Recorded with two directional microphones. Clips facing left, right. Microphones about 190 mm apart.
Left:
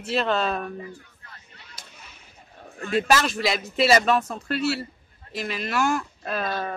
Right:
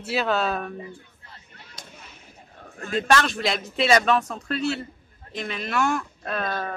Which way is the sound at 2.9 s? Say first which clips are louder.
Even; 5° left (ahead or behind).